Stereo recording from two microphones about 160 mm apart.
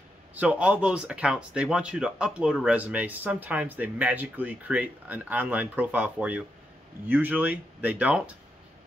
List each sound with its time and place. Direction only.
0.3 s speech: 10° right (ahead or behind)